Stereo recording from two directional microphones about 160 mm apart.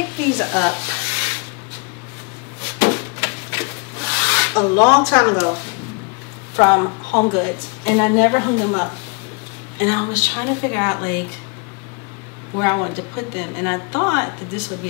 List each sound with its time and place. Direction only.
0.0 s a sound: 15° left (ahead or behind)
2.6 s rub: 15° left (ahead or behind)
6.5 s a woman's voice: 20° left (ahead or behind)
12.5 s a woman's voice: 20° left (ahead or behind)